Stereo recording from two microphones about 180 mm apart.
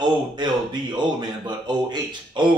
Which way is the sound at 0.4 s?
25° right (ahead or behind).